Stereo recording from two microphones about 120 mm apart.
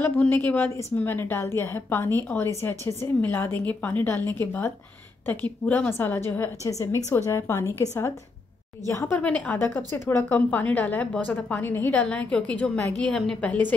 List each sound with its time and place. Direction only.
0.0 s a woman's voice: 15° left (ahead or behind)